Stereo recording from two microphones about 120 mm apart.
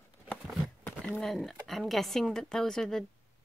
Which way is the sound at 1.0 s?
5° left (ahead or behind).